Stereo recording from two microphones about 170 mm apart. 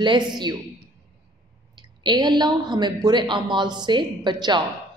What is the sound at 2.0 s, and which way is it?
A man's voice, 25° right (ahead or behind).